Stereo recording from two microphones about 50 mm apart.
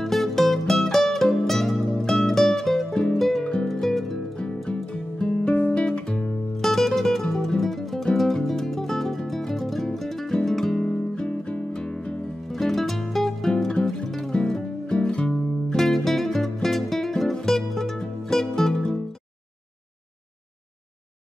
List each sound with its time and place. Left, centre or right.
0.0 s music: centre
3.2 s music: centre
3.6 s harp: centre
4.4 s music: centre
5.8 s guitar: centre
6.7 s music: centre
11.2 s music: left
12.5 s music: centre
15.7 s music: centre